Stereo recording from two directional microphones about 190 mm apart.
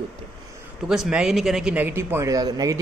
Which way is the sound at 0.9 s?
5° right (ahead or behind).